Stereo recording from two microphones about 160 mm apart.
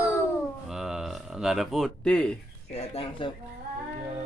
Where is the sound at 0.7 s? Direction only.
Centre (ahead or behind).